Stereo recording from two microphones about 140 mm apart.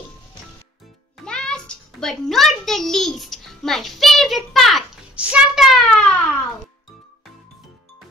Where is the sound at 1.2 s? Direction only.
5° left (ahead or behind).